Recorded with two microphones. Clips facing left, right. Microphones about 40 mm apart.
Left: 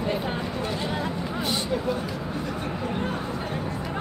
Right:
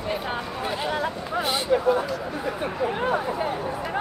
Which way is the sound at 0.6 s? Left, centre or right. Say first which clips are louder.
Right 4 dB; centre.